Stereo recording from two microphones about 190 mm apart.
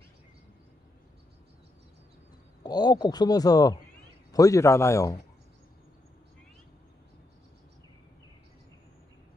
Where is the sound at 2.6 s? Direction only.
20° left (ahead or behind).